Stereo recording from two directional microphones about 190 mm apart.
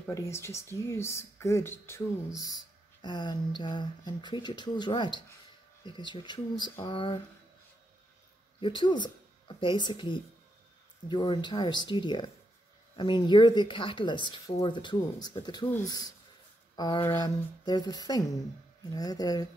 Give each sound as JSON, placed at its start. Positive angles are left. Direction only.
{"t": 0.0, "sound": "speech", "side_deg": 15}
{"t": 8.5, "sound": "speech", "side_deg": 25}